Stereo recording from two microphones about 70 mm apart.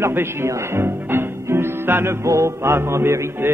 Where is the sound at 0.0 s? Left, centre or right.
Right.